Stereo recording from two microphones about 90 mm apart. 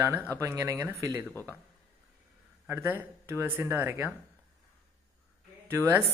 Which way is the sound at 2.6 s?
25° right (ahead or behind).